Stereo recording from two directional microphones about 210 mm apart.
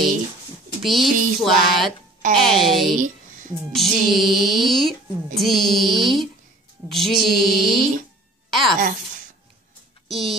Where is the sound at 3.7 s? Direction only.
Centre (ahead or behind).